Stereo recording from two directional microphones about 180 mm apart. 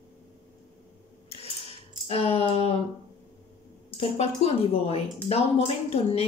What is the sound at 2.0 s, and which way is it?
Speech, 35° left (ahead or behind).